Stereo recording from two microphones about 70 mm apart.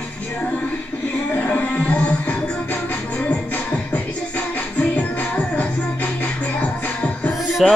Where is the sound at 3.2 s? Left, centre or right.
Centre.